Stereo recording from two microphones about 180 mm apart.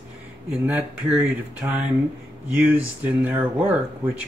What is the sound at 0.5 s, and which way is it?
Speech, 10° right (ahead or behind).